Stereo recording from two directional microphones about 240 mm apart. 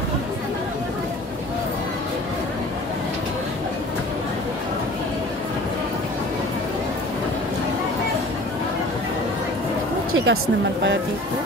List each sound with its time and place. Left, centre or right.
10.1 s speech: right